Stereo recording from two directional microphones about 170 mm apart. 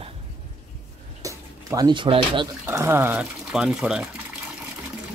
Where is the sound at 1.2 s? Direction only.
20° right (ahead or behind).